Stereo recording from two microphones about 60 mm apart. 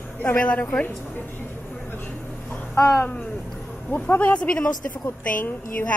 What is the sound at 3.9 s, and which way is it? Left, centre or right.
Speech, left.